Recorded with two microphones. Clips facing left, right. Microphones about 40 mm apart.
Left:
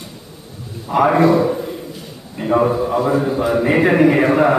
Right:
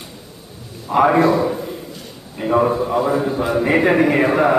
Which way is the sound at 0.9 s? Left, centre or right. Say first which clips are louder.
Left 1 dB; centre.